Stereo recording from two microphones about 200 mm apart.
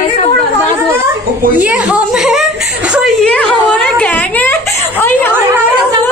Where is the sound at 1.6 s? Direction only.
5° right (ahead or behind); by 5.3 s 10° left (ahead or behind).